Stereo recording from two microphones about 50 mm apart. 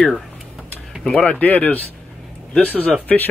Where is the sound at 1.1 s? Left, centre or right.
Left.